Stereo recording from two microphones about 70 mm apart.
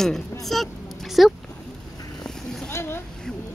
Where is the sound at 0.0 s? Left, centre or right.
Centre.